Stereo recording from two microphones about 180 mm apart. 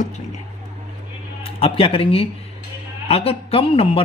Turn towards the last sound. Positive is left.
turn(degrees=30)  # may be behind; listen again after turning